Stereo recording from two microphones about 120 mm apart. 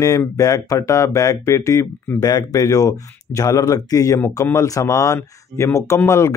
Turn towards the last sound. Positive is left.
turn(degrees=25)  # may be behind; listen again after turning